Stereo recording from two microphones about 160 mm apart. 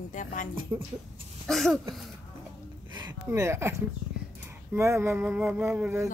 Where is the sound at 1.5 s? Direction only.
Centre (ahead or behind).